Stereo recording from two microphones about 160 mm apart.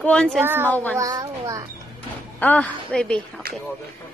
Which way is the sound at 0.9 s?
20° right (ahead or behind).